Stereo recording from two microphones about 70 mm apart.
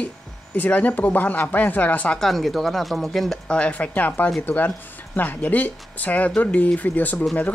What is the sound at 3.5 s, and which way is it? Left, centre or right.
Speech, centre.